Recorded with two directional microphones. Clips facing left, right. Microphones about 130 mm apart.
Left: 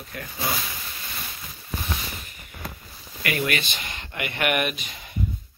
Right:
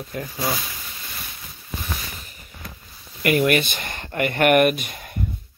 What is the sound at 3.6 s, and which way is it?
Speech, 50° right (ahead or behind).